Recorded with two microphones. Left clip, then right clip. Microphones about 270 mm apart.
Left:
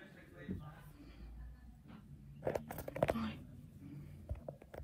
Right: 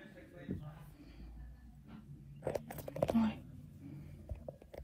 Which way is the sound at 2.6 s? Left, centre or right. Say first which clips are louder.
Left 1 dB; right.